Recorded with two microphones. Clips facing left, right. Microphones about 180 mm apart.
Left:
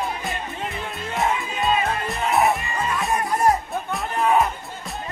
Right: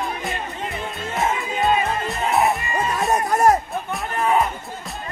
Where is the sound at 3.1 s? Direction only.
45° right (ahead or behind).